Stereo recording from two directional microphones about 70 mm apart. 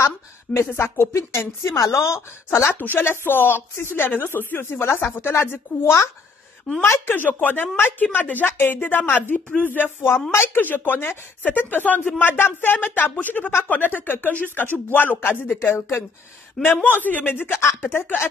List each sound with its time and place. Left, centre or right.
0.7 s a woman's voice: left
2.8 s speech: left